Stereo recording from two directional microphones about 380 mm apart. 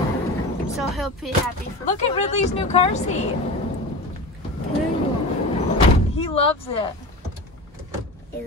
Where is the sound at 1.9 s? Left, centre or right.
Centre.